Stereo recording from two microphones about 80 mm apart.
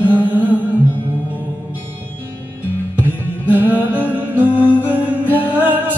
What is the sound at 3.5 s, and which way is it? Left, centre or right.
Music, right.